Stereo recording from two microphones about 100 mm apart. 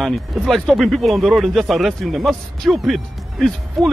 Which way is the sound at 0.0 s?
Centre (ahead or behind).